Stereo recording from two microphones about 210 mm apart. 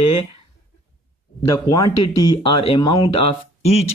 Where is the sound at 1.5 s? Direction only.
15° left (ahead or behind).